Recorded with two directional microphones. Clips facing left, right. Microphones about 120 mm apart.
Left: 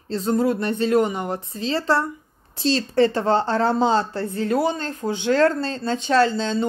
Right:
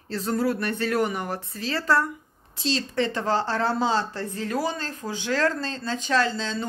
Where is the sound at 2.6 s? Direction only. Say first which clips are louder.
Left 7 dB; 40° left (ahead or behind).